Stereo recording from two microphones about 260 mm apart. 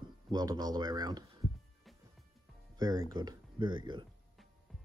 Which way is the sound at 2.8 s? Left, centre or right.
Centre.